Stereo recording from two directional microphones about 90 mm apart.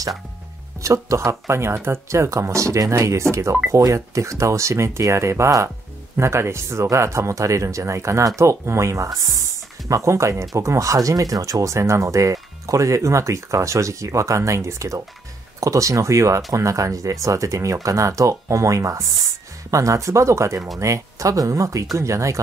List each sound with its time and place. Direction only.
0.7 s speech: 35° right (ahead or behind)